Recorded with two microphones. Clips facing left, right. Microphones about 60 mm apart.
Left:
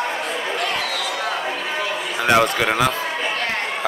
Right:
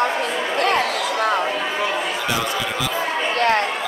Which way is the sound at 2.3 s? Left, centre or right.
Left.